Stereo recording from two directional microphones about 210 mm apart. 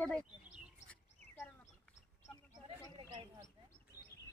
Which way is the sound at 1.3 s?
10° left (ahead or behind).